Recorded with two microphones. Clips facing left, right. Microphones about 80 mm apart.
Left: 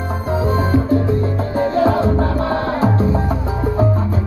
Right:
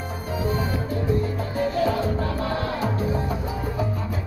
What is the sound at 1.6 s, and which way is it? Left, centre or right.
Music, left.